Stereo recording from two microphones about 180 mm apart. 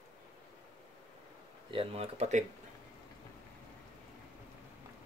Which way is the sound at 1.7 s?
30° right (ahead or behind).